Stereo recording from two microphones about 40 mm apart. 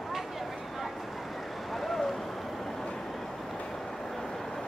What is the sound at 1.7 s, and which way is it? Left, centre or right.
Vehicle, centre.